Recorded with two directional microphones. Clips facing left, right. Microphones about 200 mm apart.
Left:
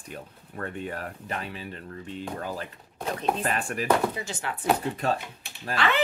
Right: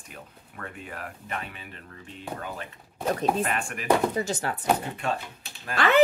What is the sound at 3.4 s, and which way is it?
Speech, 35° left (ahead or behind).